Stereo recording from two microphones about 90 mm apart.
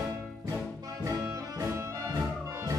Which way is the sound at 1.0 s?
40° right (ahead or behind).